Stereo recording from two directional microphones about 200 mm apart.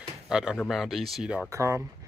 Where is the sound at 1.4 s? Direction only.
15° right (ahead or behind).